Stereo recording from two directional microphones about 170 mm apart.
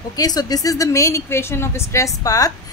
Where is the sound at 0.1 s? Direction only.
20° left (ahead or behind).